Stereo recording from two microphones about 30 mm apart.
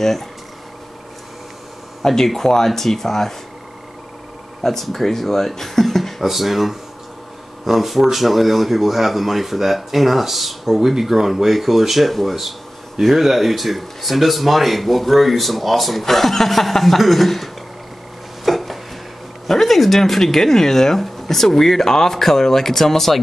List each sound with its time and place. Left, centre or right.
0.0 s speech: centre
2.0 s speech: centre
4.6 s speech: centre
6.2 s speech: centre
18.4 s a sound: centre
19.4 s speech: centre